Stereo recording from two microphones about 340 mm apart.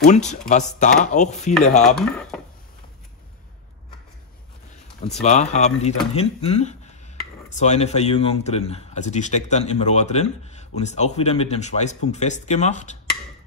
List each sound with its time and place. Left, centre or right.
0.0 s speech: left
1.8 s speech: centre
5.2 s speech: centre